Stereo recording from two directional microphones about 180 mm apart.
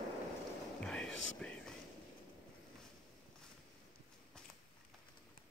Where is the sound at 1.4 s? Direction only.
5° left (ahead or behind).